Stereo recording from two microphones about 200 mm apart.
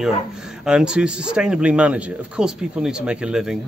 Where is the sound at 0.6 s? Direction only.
5° right (ahead or behind).